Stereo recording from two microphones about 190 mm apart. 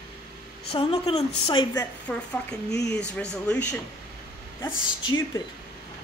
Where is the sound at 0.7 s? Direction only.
30° left (ahead or behind).